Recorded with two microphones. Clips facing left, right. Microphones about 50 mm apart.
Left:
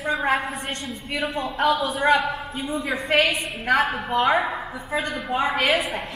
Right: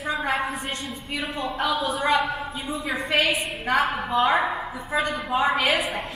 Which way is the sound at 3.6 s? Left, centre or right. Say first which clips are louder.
Left 2 dB; left.